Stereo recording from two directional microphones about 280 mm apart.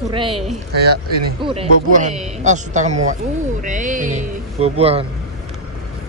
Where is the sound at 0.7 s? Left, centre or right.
Right.